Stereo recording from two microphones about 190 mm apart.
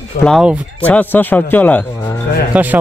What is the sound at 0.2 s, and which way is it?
A man's voice, centre (ahead or behind).